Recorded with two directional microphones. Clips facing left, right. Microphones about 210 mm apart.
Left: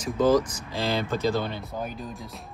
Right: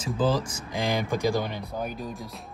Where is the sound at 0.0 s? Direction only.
30° right (ahead or behind); by 1.7 s 15° right (ahead or behind).